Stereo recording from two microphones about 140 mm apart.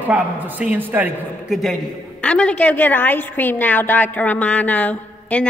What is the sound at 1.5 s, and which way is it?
A man's voice, centre (ahead or behind).